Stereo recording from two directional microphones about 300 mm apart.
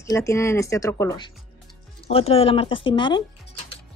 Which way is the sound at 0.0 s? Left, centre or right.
Centre.